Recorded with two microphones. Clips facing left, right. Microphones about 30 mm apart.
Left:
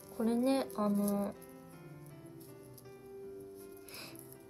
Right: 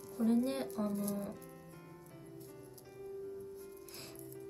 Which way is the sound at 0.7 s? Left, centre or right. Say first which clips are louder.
Left 4 dB; left.